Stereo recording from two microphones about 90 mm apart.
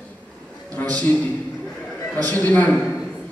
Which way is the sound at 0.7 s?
15° left (ahead or behind).